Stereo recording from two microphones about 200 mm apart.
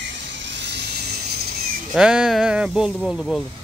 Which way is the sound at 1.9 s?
5° right (ahead or behind).